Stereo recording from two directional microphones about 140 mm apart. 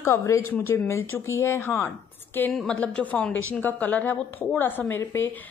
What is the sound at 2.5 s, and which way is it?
A woman's voice, 5° left (ahead or behind).